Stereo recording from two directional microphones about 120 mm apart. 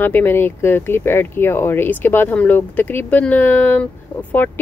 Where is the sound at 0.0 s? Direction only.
15° left (ahead or behind).